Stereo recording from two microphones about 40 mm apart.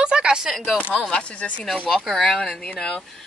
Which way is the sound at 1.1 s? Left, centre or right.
Left.